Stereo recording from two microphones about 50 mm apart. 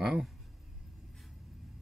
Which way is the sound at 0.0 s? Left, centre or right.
Centre.